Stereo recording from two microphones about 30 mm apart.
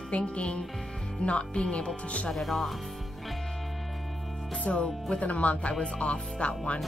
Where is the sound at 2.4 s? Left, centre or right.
Centre.